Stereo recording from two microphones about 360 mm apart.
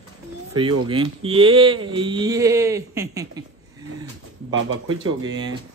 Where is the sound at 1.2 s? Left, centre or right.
Centre.